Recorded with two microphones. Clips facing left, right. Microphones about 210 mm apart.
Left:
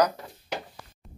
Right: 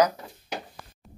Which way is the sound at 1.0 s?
Centre (ahead or behind).